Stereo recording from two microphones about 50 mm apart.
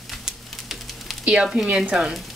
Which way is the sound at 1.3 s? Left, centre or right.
Centre.